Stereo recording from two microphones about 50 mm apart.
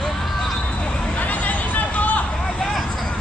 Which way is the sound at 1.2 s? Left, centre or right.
Left.